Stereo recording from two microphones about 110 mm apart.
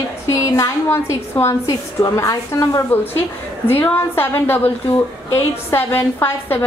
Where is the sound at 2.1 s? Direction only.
30° left (ahead or behind).